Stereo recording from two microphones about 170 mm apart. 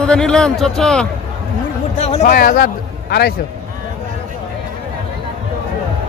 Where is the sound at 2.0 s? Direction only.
40° left (ahead or behind).